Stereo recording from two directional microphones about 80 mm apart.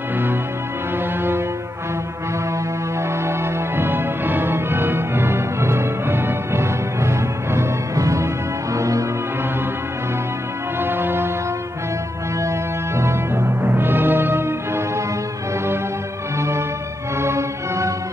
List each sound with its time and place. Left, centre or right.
0.9 s music: right
3.3 s music: right
10.8 s music: right
12.4 s music: right
16.3 s music: right